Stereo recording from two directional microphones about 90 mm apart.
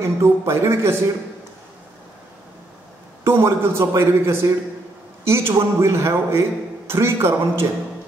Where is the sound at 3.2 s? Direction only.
25° right (ahead or behind).